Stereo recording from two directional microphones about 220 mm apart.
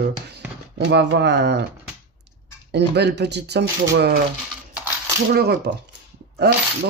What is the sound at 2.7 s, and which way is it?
Speech, 50° right (ahead or behind).